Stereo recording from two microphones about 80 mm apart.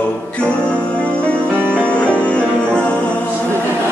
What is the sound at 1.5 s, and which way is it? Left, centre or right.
Music, right.